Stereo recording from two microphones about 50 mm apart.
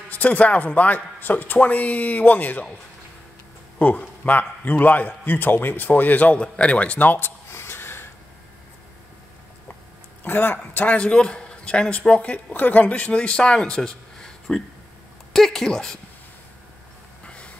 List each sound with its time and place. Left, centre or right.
0.1 s a man's voice: left
3.8 s a man's voice: left
7.5 s snort: left
10.2 s speech: left
10.9 s a man's voice: left